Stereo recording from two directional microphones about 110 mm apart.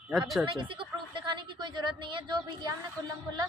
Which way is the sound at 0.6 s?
50° right (ahead or behind).